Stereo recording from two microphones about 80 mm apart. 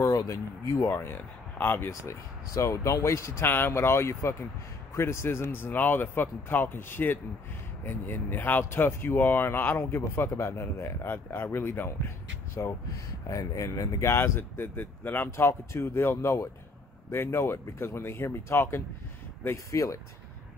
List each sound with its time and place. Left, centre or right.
0.0 s speech: left
0.8 s speech: left
1.9 s speech: left
12.5 s speech: left